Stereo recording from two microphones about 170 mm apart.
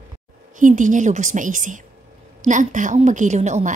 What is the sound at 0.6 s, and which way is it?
A woman's voice, 50° right (ahead or behind).